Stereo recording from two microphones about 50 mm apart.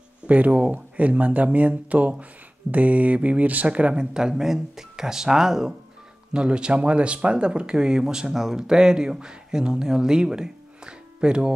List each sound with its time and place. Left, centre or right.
0.3 s speech: right